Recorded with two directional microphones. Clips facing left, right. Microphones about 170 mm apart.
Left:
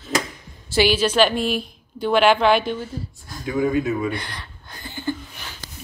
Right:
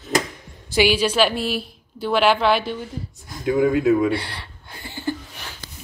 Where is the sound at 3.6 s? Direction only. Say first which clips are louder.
Right 4 dB; 90° right.